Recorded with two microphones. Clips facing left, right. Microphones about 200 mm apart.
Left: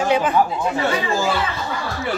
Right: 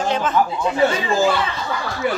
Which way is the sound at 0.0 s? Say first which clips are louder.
Left 2 dB; 10° left (ahead or behind).